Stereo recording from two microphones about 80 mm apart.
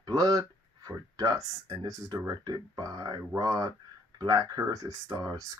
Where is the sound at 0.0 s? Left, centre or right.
Right.